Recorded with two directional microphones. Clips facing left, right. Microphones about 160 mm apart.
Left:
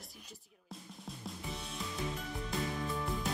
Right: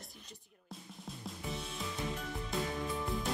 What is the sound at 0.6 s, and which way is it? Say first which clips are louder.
Music: even; centre (ahead or behind).